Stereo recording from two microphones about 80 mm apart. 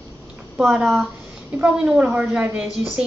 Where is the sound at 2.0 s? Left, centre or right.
Centre.